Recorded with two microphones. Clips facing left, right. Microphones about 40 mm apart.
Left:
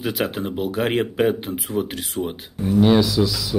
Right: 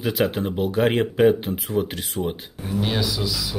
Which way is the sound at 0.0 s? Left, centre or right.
Centre.